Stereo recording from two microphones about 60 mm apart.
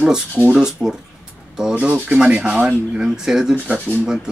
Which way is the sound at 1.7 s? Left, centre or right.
Right.